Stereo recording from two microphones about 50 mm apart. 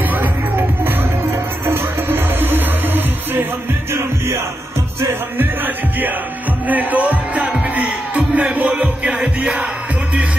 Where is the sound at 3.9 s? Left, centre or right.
Right.